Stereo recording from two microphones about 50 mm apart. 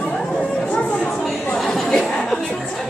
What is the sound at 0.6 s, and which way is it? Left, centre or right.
Chatter, left.